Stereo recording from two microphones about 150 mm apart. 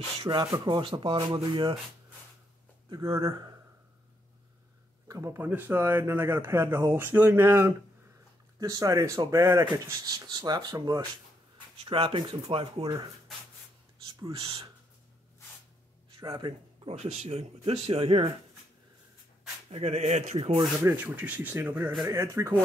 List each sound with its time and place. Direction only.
0.2 s speech: 30° right (ahead or behind)
3.2 s speech: 25° right (ahead or behind)
5.0 s speech: 20° right (ahead or behind); by 12.8 s 40° right (ahead or behind)
14.3 s speech: 30° right (ahead or behind)
16.1 s speech: 30° right (ahead or behind)
16.8 s speech: 45° right (ahead or behind)
19.7 s speech: 40° right (ahead or behind)
20.8 s speech: 10° right (ahead or behind)